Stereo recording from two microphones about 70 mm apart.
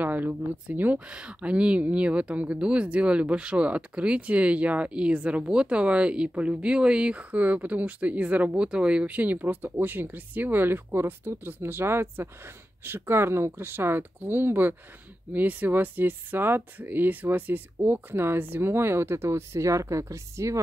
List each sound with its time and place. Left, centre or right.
0.0 s speech: right
0.9 s speech: centre; by 20.6 s right